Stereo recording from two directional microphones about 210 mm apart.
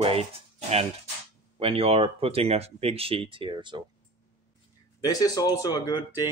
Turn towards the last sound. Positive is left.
turn(degrees=15)  # may be behind; listen again after turning